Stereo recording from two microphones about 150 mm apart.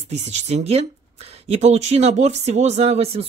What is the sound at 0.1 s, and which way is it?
Speech, 45° right (ahead or behind).